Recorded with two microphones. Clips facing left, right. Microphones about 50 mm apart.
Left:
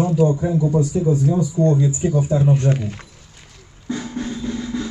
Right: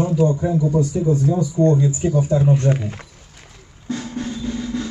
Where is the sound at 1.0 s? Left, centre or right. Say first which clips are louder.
Even; centre.